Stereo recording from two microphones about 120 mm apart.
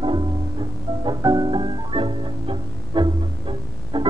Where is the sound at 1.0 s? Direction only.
35° right (ahead or behind).